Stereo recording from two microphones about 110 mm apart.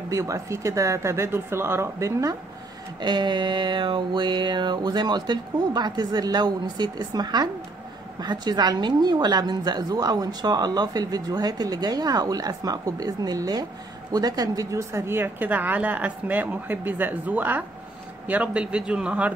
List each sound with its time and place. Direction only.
0.1 s speech: 30° right (ahead or behind)
3.0 s a sound: 45° right (ahead or behind)
8.2 s a woman's voice: 40° right (ahead or behind); by 19.3 s 10° right (ahead or behind)